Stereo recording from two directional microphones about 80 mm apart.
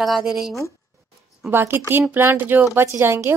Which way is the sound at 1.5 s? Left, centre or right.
Right.